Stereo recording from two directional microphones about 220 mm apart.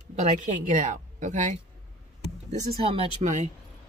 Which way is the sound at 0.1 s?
30° right (ahead or behind).